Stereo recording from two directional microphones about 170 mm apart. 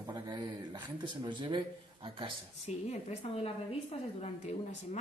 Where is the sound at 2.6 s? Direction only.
40° left (ahead or behind).